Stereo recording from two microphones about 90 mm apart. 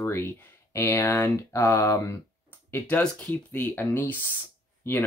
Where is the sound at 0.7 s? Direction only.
30° left (ahead or behind).